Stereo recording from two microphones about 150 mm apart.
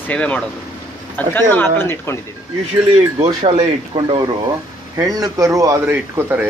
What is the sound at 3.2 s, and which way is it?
Speech, 45° right (ahead or behind).